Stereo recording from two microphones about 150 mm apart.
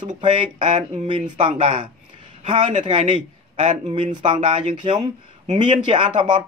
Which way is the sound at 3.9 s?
30° right (ahead or behind).